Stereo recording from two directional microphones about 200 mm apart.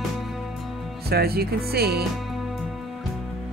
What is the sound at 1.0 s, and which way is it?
Music, 50° right (ahead or behind).